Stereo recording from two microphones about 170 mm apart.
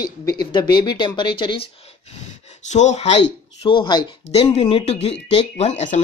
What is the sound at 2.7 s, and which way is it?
Speech, 45° left (ahead or behind).